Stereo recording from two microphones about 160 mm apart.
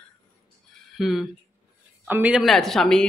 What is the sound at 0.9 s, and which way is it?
A man's voice, centre (ahead or behind).